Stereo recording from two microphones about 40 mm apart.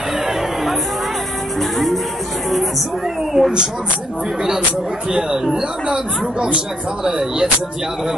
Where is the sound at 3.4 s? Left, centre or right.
Centre.